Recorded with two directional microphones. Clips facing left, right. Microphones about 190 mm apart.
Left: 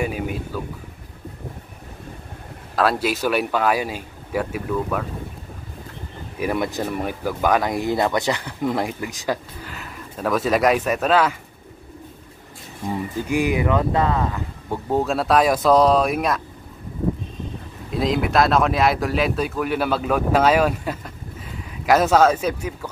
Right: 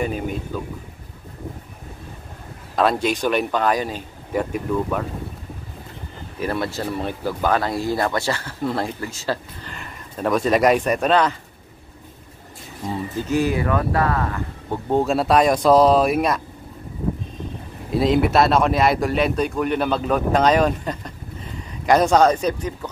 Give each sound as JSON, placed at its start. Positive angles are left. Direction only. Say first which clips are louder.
{"t": 0.0, "sound": "a sound", "louder": "right 1 dB", "side_deg": 5}
{"t": 2.7, "sound": "speech", "louder": "right 1 dB", "side_deg": 0}
{"t": 6.4, "sound": "speech", "louder": "left 1 dB", "side_deg": 15}
{"t": 12.9, "sound": "speech", "louder": "right 1 dB", "side_deg": 15}
{"t": 14.9, "sound": "speech", "louder": "right 2 dB", "side_deg": 0}
{"t": 17.9, "sound": "speech", "louder": "right 3 dB", "side_deg": 0}